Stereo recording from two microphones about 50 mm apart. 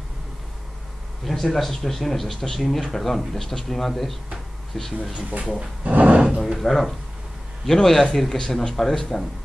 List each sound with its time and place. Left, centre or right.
1.2 s speech: centre
5.4 s speech: centre
5.9 s a sound: right
6.2 s a man's voice: centre